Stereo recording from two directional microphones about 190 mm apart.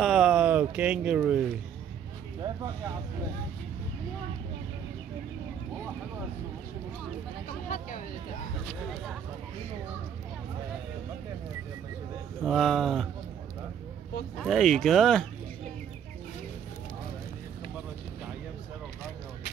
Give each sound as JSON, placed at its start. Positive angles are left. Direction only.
{"t": 0.0, "sound": "a sound", "side_deg": 0}
{"t": 2.4, "sound": "speech", "side_deg": -20}
{"t": 12.4, "sound": "speech", "side_deg": 0}
{"t": 14.4, "sound": "speech", "side_deg": 0}